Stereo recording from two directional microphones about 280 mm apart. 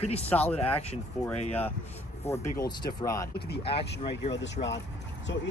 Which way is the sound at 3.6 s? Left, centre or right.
Centre.